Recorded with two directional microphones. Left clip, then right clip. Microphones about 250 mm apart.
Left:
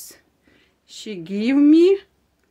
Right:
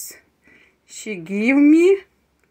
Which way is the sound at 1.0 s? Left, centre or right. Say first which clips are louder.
Right 3 dB; centre.